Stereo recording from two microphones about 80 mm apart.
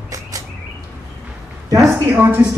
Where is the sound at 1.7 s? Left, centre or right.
Right.